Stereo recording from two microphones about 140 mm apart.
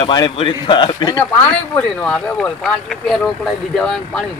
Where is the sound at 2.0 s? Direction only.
5° left (ahead or behind).